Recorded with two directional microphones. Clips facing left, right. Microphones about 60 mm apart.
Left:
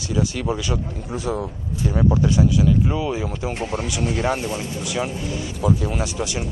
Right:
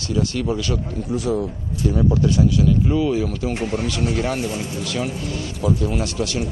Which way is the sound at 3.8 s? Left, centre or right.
Centre.